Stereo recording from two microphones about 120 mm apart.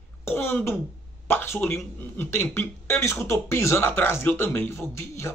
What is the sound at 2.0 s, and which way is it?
Speech, 20° left (ahead or behind).